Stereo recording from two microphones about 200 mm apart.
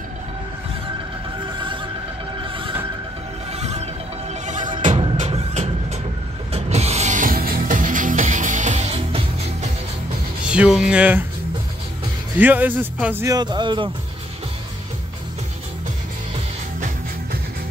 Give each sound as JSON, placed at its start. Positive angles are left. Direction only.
{"t": 1.4, "sound": "music", "side_deg": -25}
{"t": 5.1, "sound": "vehicle", "side_deg": -35}
{"t": 6.5, "sound": "music", "side_deg": -30}
{"t": 10.5, "sound": "speech", "side_deg": -5}
{"t": 12.4, "sound": "speech", "side_deg": -10}